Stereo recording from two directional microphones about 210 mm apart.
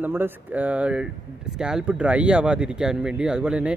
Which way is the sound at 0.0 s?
10° right (ahead or behind).